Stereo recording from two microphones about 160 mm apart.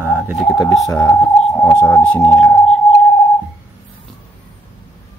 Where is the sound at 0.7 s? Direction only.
5° left (ahead or behind).